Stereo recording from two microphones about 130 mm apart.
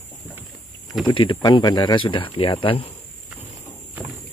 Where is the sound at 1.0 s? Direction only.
40° left (ahead or behind).